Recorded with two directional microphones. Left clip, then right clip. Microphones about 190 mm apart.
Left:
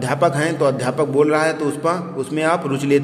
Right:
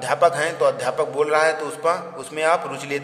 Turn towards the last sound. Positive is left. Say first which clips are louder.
# left 5 dB
turn(degrees=10)  # may be behind; listen again after turning